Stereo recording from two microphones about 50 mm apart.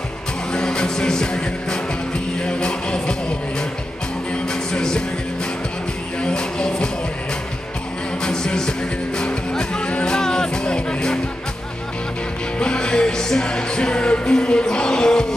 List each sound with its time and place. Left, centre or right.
0.5 s music: centre
4.3 s music: centre
6.2 s music: centre
8.2 s music: centre
12.5 s music: centre